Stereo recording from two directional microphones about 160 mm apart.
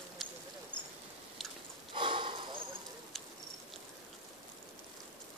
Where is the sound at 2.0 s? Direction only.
30° right (ahead or behind).